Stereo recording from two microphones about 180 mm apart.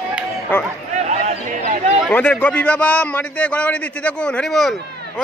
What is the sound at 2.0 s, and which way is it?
A man's voice, 10° left (ahead or behind).